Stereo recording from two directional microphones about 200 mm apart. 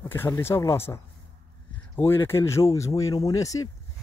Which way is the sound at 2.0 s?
10° left (ahead or behind).